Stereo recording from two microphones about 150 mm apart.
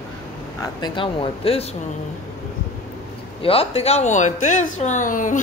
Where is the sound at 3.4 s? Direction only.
40° left (ahead or behind).